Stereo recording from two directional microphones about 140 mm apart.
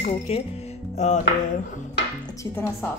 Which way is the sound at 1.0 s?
55° left (ahead or behind).